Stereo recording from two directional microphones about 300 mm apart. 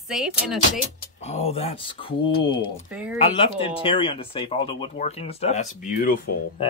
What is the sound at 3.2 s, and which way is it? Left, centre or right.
Speech, centre.